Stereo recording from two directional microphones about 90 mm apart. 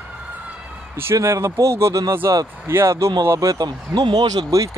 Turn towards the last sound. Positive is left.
turn(degrees=-45)  # may be behind; listen again after turning